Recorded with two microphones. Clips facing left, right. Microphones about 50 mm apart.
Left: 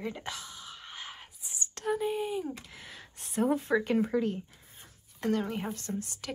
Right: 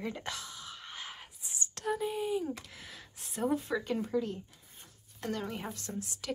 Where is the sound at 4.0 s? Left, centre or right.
Left.